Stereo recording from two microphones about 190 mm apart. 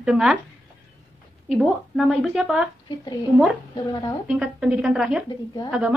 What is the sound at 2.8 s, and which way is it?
Speech, 20° left (ahead or behind).